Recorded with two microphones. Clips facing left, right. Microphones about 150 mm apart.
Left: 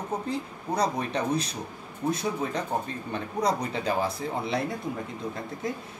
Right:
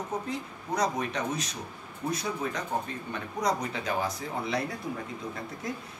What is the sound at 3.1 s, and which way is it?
Speech, 30° left (ahead or behind).